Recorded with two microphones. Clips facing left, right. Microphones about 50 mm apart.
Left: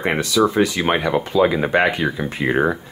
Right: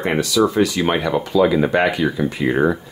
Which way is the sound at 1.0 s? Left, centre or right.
Centre.